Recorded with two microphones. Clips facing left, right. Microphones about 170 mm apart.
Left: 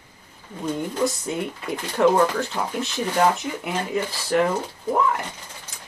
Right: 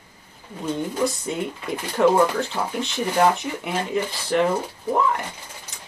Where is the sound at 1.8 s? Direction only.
10° right (ahead or behind).